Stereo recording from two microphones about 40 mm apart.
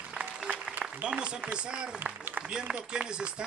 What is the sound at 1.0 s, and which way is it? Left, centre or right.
Speech, right.